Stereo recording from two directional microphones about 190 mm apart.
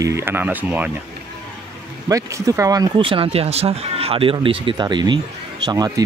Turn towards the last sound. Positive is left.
turn(degrees=-20)  # may be behind; listen again after turning